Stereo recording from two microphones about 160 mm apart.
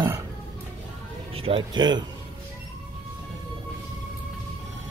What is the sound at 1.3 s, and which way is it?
Speech, 35° right (ahead or behind).